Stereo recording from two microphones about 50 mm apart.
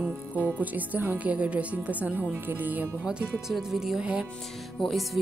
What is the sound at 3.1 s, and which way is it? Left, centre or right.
Speech, centre.